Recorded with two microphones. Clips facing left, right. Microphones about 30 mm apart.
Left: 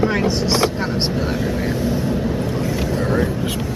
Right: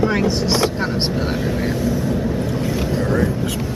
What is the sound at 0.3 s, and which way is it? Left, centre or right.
Speech, centre.